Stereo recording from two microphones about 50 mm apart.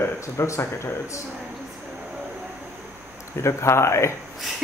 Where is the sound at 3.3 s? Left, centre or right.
Left.